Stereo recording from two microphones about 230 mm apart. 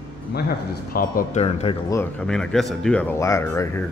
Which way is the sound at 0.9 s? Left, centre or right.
Left.